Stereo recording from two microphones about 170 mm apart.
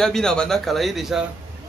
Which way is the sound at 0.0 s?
5° left (ahead or behind).